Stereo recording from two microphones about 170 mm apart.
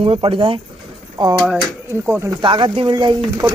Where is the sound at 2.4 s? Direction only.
30° right (ahead or behind).